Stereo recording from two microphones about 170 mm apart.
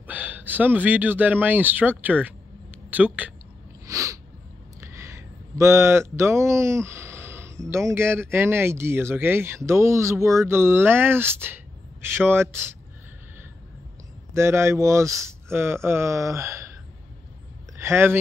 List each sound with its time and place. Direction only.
0.0 s speech: 10° right (ahead or behind)
3.8 s sneeze: 20° right (ahead or behind)
4.7 s speech: 15° right (ahead or behind)
14.3 s speech: 15° right (ahead or behind)
17.7 s speech: 15° right (ahead or behind)